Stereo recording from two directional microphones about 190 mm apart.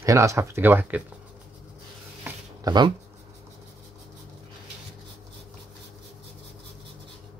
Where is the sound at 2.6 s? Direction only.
25° right (ahead or behind).